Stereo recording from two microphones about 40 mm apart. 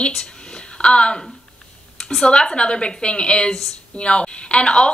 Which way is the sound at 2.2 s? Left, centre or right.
Left.